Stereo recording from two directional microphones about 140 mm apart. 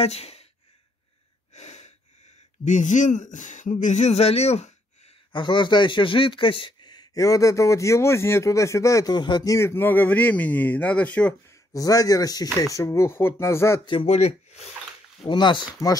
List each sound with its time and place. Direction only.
0.0 s speech: 45° left (ahead or behind)
1.5 s a sound: 55° left (ahead or behind)
2.6 s speech: 60° left (ahead or behind)
5.3 s a man's voice: 35° left (ahead or behind); by 11.3 s 10° left (ahead or behind)
11.4 s a man's voice: 25° left (ahead or behind)
13.8 s speech: 45° left (ahead or behind)
15.2 s speech: 35° left (ahead or behind)